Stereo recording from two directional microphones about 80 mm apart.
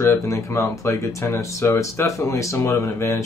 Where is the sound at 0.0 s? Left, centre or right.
Left.